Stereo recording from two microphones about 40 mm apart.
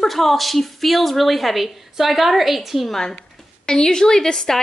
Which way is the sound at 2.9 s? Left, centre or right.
Centre.